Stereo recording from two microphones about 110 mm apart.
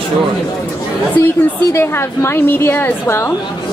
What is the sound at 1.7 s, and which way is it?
A woman's voice, 25° left (ahead or behind).